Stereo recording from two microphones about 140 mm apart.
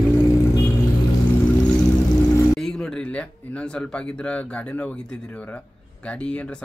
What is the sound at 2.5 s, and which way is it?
Speech, 5° left (ahead or behind).